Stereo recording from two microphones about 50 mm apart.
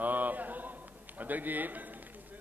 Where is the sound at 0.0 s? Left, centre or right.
Right.